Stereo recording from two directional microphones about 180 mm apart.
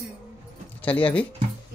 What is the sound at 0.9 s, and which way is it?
Speech, 30° left (ahead or behind).